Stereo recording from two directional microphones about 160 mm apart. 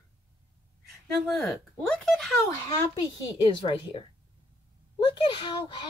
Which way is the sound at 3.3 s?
30° left (ahead or behind).